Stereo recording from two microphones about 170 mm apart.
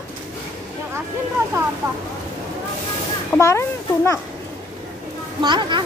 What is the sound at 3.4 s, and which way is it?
Speech, 15° left (ahead or behind).